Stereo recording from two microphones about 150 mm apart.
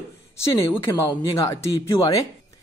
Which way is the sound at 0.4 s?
15° left (ahead or behind).